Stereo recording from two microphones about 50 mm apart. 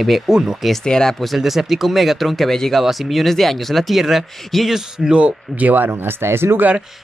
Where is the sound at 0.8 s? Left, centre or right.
Centre.